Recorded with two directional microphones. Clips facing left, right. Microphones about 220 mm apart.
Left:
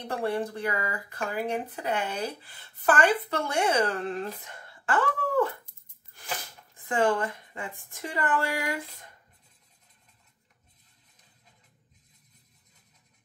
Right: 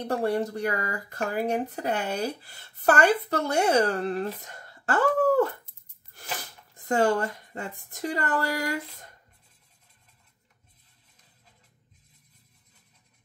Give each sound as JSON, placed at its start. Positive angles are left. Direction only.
{"t": 0.0, "sound": "speech", "side_deg": -40}
{"t": 6.7, "sound": "speech", "side_deg": -40}